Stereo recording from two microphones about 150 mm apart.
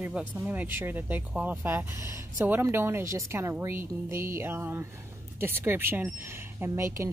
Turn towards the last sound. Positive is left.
turn(degrees=-20)  # may be behind; listen again after turning